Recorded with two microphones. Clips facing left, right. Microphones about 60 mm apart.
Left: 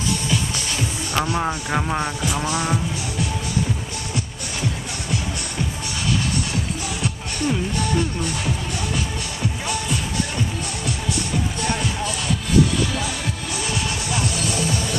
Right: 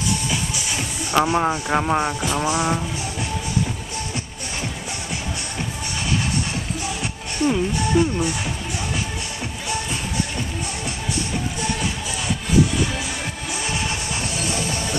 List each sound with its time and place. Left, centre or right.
0.3 s music: centre
1.4 s speech: centre
2.4 s music: centre
7.0 s speech: centre
13.7 s music: right